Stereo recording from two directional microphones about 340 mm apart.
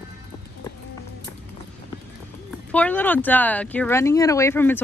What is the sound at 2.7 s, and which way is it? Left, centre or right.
Speech, centre.